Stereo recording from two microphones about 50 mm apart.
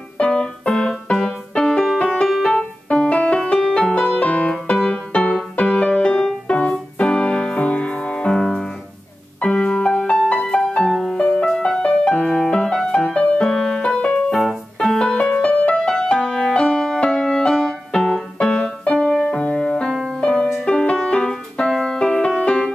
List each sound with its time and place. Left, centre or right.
0.2 s keyboard: centre
1.5 s music: centre
2.9 s music: left
8.4 s piano: centre
9.4 s music: centre
11.1 s music: left
11.5 s music: centre
13.1 s music: left
13.5 s music: centre
14.3 s keyboard: centre
15.1 s music: left
15.9 s music: centre
18.9 s music: centre
19.3 s music: centre